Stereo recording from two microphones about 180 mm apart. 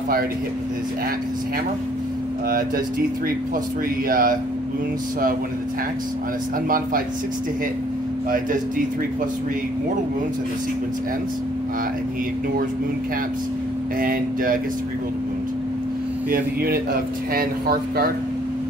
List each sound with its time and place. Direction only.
4.1 s speech: 50° right (ahead or behind)
14.0 s speech: 50° right (ahead or behind)
16.3 s speech: 55° right (ahead or behind)